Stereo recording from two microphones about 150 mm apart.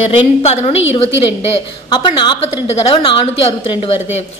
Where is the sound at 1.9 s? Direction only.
30° left (ahead or behind).